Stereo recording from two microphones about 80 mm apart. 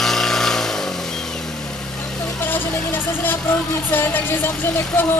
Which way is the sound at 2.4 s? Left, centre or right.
Left.